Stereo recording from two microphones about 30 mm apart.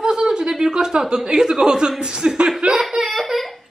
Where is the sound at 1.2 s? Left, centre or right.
Centre.